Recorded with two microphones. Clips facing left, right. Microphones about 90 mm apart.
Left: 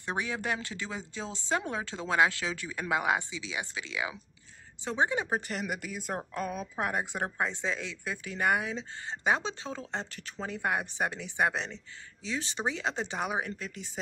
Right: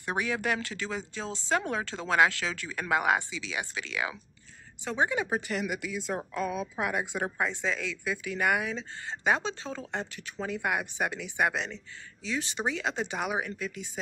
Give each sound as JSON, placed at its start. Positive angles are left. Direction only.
{"t": 0.2, "sound": "speech", "side_deg": 25}
{"t": 7.3, "sound": "speech", "side_deg": 25}
{"t": 8.0, "sound": "speech", "side_deg": 40}
{"t": 8.7, "sound": "speech", "side_deg": 20}